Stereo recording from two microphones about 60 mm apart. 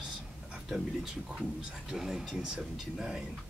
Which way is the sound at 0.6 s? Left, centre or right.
Centre.